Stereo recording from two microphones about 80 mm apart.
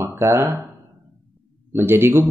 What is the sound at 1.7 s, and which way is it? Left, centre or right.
Speech, right.